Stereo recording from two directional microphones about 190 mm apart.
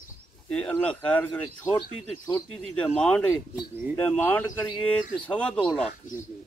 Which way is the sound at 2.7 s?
5° left (ahead or behind).